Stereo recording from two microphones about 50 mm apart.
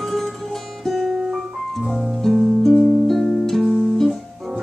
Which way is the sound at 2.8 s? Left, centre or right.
Centre.